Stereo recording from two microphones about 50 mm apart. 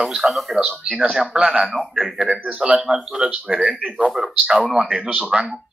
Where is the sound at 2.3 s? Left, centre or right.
Right.